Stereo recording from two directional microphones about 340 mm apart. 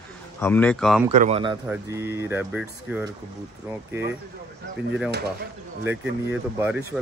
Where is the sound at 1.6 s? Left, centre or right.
Centre.